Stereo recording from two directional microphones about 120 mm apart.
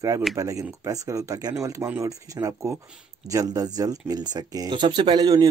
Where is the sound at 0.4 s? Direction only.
30° right (ahead or behind).